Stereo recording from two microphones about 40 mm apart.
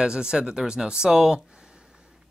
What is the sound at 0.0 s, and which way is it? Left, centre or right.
Speech, right.